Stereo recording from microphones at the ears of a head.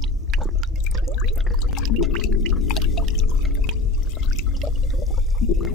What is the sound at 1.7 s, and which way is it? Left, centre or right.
Pour, left.